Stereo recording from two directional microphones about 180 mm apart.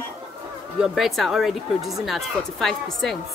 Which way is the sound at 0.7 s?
5° right (ahead or behind).